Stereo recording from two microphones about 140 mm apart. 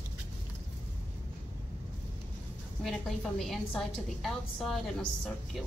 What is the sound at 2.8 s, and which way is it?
A woman's voice, centre (ahead or behind).